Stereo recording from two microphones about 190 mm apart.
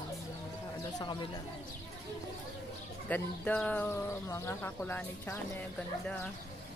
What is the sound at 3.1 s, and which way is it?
Speech, 10° left (ahead or behind).